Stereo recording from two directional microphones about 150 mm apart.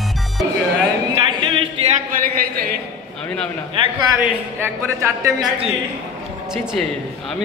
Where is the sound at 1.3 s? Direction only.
35° right (ahead or behind).